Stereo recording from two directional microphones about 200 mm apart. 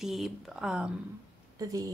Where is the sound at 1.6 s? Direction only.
20° right (ahead or behind).